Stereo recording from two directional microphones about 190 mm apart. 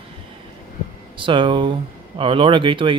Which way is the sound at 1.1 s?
25° right (ahead or behind).